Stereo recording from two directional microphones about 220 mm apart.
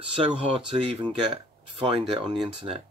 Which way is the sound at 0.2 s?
25° right (ahead or behind).